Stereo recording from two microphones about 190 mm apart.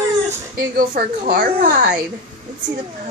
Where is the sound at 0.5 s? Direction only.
45° right (ahead or behind).